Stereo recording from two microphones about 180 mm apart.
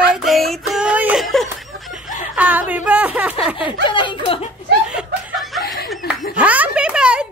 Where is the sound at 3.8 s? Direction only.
25° left (ahead or behind).